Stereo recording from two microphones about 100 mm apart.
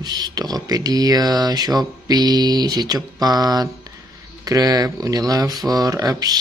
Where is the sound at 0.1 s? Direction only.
40° right (ahead or behind).